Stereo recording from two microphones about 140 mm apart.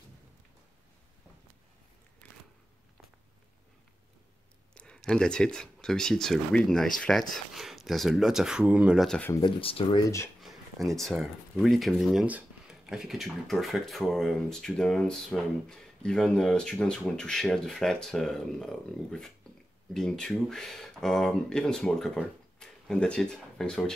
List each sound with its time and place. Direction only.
4.7 s speech: 5° left (ahead or behind)
9.6 s speech: 40° left (ahead or behind)
10.0 s speech: 20° left (ahead or behind)
10.4 s a sound: centre (ahead or behind)
11.0 s speech: centre (ahead or behind)